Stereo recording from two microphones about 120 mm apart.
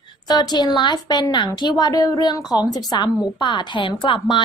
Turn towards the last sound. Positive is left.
turn(degrees=45)  # may be behind; listen again after turning